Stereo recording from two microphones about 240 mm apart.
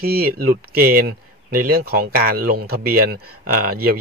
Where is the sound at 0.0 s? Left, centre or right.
Right.